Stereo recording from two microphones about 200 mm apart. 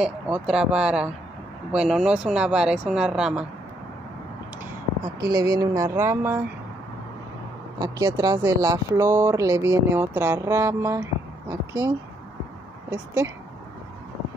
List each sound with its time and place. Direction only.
0.0 s speech: 5° right (ahead or behind)
5.3 s speech: 20° right (ahead or behind)
7.8 s speech: 20° right (ahead or behind)
12.9 s speech: 15° right (ahead or behind)